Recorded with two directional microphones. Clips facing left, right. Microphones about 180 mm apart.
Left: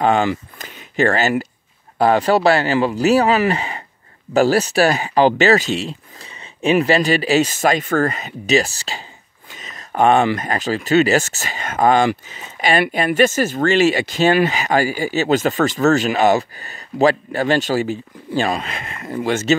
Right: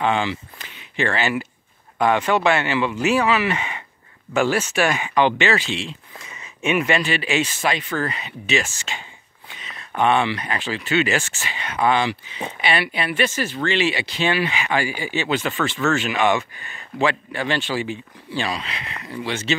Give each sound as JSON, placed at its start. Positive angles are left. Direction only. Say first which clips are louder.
{"t": 0.0, "sound": "speech", "louder": "left 5 dB", "side_deg": 45}